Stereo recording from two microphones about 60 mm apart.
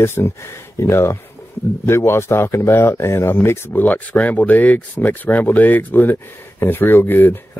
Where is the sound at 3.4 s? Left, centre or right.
Left.